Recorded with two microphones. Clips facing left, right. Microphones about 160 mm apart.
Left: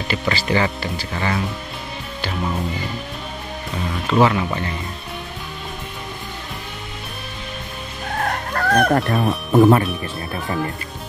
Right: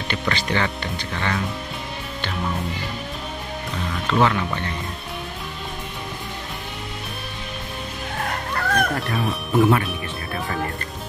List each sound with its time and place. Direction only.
0.1 s speech: 5° left (ahead or behind)
4.1 s speech: 5° left (ahead or behind)
8.5 s speech: 40° left (ahead or behind)